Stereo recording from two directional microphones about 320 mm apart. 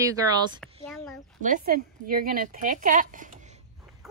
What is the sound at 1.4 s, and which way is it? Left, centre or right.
A woman's voice, right.